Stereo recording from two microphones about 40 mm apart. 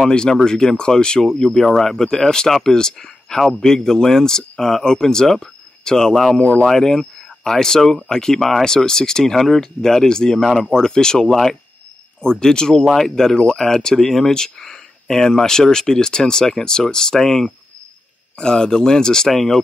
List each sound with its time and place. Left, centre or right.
0.1 s speech: centre
6.3 s speech: left
6.7 s speech: centre
8.6 s speech: centre